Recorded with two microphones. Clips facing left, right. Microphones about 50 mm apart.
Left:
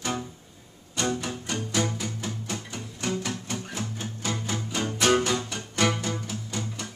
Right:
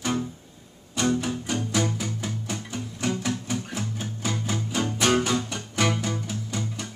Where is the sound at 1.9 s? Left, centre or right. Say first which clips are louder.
Right 2 dB; centre.